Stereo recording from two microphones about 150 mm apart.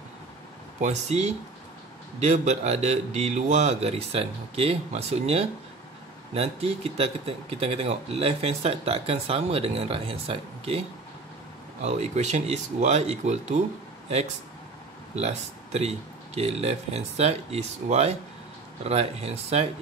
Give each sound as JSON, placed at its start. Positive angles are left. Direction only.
{"t": 0.7, "sound": "a man's voice", "side_deg": -50}
{"t": 11.8, "sound": "a man's voice", "side_deg": -50}